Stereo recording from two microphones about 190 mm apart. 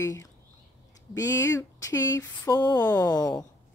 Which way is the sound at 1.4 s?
15° left (ahead or behind).